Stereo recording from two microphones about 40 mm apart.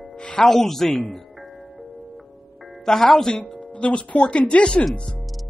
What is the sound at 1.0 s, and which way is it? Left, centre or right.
Music, centre.